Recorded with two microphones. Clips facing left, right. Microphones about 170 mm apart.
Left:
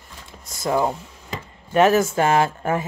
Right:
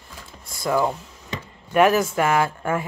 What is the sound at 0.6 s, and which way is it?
Speech, 25° left (ahead or behind).